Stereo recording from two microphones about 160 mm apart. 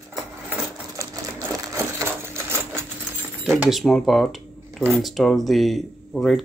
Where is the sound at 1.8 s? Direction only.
15° right (ahead or behind).